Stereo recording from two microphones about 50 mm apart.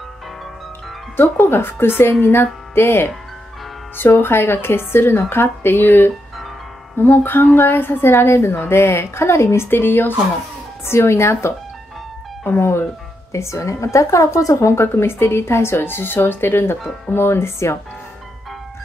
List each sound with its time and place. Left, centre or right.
1.1 s speech: left
4.2 s a woman's voice: left
9.7 s speech: left
10.9 s a woman's voice: left
13.3 s a woman's voice: left